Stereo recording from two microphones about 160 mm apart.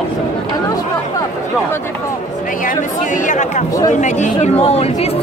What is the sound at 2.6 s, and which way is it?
Speech, 55° left (ahead or behind).